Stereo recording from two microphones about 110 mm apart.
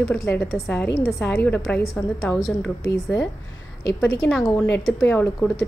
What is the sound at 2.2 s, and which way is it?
A woman's voice, 5° left (ahead or behind).